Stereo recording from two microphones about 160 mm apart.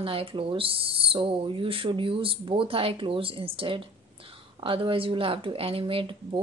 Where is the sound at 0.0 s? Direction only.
35° right (ahead or behind).